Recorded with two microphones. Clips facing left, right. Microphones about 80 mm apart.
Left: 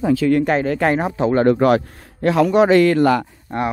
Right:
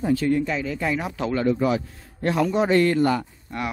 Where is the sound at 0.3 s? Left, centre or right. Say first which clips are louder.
Left 7 dB; left.